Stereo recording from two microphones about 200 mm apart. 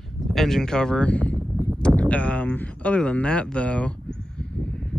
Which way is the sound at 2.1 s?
5° left (ahead or behind).